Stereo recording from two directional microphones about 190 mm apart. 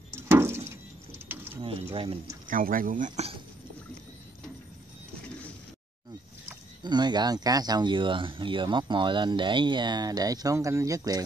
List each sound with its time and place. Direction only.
0.1 s a sound: 10° right (ahead or behind)
1.6 s speech: 30° right (ahead or behind)
2.4 s speech: 45° right (ahead or behind)
6.8 s speech: 20° right (ahead or behind)